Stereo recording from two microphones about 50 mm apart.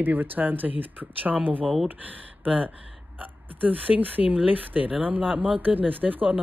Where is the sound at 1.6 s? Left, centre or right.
Centre.